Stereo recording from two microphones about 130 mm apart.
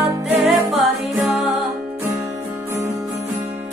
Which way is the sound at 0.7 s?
Centre (ahead or behind).